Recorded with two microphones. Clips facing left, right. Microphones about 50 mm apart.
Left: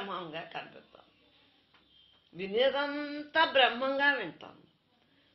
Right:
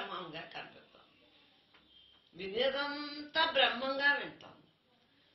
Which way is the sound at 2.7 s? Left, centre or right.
Left.